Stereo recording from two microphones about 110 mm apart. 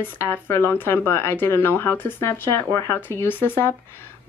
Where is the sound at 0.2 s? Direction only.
20° left (ahead or behind).